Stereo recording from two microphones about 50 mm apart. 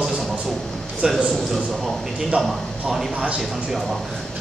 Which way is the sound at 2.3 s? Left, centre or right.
Centre.